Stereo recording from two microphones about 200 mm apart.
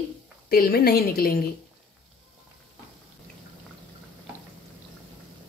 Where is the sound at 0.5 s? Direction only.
50° left (ahead or behind).